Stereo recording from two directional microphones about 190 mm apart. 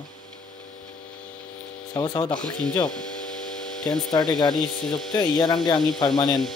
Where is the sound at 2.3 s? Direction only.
5° left (ahead or behind).